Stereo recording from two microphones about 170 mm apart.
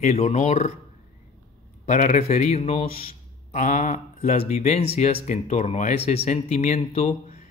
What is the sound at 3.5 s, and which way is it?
Speech, 50° left (ahead or behind).